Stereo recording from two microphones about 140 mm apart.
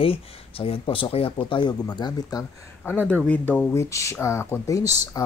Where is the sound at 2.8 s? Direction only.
10° left (ahead or behind).